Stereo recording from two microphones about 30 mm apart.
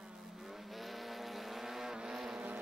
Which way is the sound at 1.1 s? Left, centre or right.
Centre.